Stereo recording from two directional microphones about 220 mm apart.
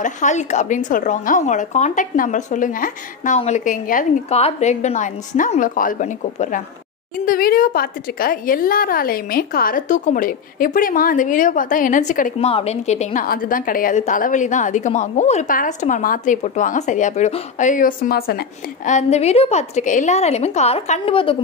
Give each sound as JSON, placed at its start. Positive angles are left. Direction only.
{"t": 0.0, "sound": "a woman's voice", "side_deg": 35}